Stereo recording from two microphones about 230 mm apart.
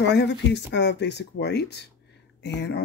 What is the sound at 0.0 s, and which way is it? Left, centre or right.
Speech, left.